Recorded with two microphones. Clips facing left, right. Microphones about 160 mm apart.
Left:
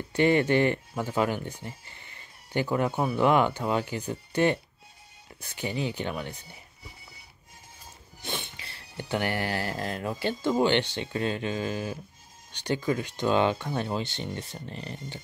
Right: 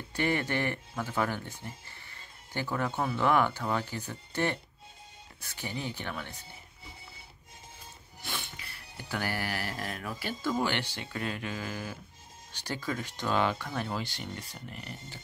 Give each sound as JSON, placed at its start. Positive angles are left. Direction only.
{"t": 0.1, "sound": "speech", "side_deg": 20}
{"t": 8.2, "sound": "a sound", "side_deg": 20}
{"t": 12.5, "sound": "speech", "side_deg": 20}